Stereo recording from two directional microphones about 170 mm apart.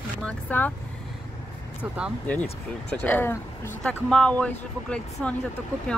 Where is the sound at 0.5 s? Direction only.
10° left (ahead or behind).